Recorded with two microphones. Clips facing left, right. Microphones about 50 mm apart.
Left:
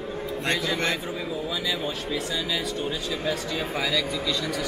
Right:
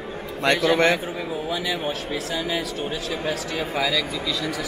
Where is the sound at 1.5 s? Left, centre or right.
Right.